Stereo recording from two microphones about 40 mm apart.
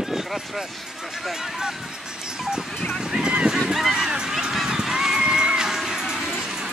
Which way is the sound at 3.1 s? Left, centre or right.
Right.